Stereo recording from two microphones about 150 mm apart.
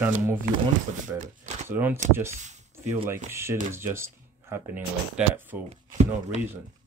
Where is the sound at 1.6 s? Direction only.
15° right (ahead or behind).